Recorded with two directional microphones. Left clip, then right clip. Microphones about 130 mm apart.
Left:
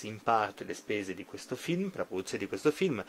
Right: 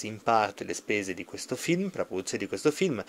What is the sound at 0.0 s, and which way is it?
Speech, 25° right (ahead or behind).